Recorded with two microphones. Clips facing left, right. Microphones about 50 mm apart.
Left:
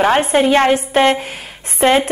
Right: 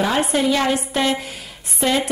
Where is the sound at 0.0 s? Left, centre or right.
Left.